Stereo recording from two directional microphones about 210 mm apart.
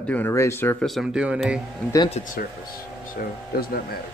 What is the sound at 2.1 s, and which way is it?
Speech, 40° left (ahead or behind).